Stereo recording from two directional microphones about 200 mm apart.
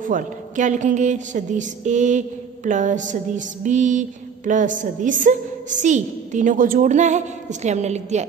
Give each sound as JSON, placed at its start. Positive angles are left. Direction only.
{"t": 0.0, "sound": "a woman's voice", "side_deg": -40}